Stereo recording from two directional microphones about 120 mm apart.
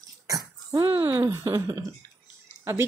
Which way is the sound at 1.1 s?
25° right (ahead or behind).